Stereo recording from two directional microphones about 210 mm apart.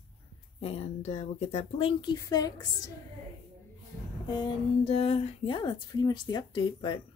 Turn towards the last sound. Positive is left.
turn(degrees=20)  # may be behind; listen again after turning